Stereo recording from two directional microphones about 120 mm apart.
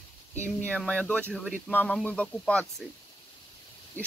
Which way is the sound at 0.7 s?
10° left (ahead or behind).